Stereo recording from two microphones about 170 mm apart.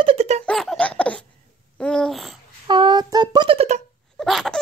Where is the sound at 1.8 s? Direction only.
5° left (ahead or behind).